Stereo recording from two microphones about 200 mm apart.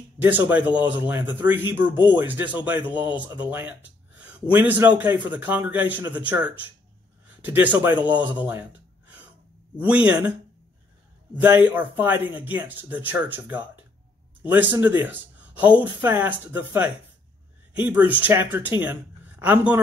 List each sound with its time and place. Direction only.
0.2 s speech: 10° right (ahead or behind)
8.1 s speech: 20° right (ahead or behind)
8.5 s gasp: 10° right (ahead or behind)
9.8 s speech: 5° right (ahead or behind)
11.4 s speech: 10° right (ahead or behind)
14.8 s speech: 10° right (ahead or behind)